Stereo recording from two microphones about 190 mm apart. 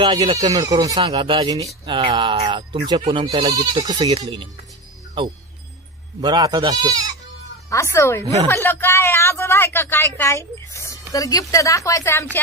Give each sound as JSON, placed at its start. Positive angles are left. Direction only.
{"t": 0.0, "sound": "speech", "side_deg": -25}
{"t": 6.2, "sound": "speech", "side_deg": -20}
{"t": 7.7, "sound": "speech", "side_deg": 15}